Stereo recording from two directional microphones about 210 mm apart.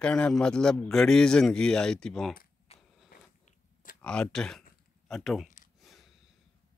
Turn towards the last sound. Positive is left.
turn(degrees=0)  # may be behind; listen again after turning